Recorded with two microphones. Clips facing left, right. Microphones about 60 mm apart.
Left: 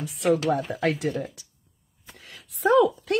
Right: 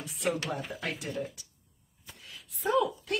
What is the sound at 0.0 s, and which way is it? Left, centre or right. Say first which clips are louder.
Speech: left 9 dB; left.